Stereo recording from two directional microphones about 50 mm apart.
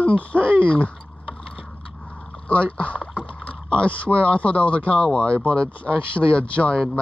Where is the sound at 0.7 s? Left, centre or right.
Left.